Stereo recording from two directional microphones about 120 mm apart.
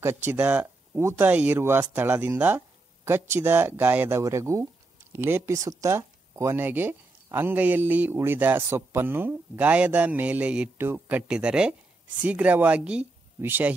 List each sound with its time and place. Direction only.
0.0 s speech: 20° right (ahead or behind)